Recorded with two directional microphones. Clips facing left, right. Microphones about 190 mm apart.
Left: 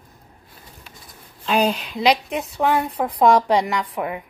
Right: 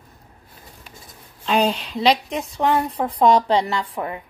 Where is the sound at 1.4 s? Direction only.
5° left (ahead or behind).